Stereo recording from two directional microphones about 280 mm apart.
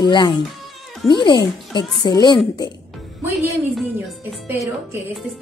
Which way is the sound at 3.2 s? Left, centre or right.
Centre.